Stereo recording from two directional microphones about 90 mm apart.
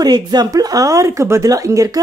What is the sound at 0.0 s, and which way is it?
Speech, 50° right (ahead or behind).